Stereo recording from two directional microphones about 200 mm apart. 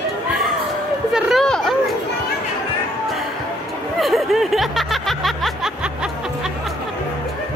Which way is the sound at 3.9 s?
Centre (ahead or behind).